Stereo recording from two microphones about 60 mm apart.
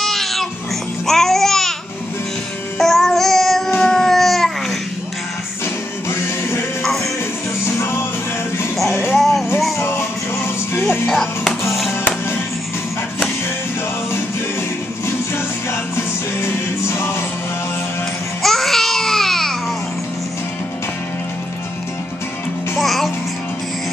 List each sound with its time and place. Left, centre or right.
0.0 s music: centre
1.0 s babbling: centre
2.8 s child singing: centre
3.8 s babbling: centre
6.0 s music: left
6.8 s music: centre
7.8 s music: left
9.1 s music: centre
9.8 s music: left
11.1 s music: centre
15.3 s music: left
18.4 s babbling: centre
22.8 s babbling: centre